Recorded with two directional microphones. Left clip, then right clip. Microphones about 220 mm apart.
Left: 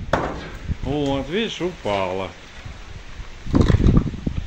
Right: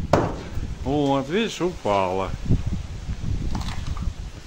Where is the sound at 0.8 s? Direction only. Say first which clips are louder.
Right 1 dB; 15° right (ahead or behind).